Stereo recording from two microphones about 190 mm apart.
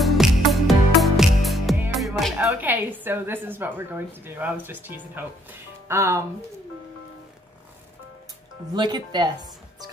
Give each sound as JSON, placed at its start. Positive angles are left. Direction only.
{"t": 0.0, "sound": "music", "side_deg": 0}
{"t": 2.0, "sound": "a woman's voice", "side_deg": 0}
{"t": 8.7, "sound": "speech", "side_deg": -25}